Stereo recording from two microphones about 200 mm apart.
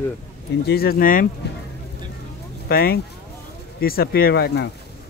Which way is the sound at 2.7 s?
50° left (ahead or behind).